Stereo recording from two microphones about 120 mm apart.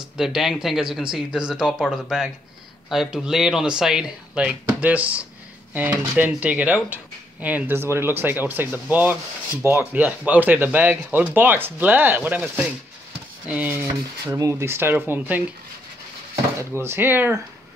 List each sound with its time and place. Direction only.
0.2 s speech: 5° right (ahead or behind)
16.7 s speech: 20° right (ahead or behind)